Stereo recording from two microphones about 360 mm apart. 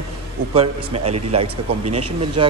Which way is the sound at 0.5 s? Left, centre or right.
Centre.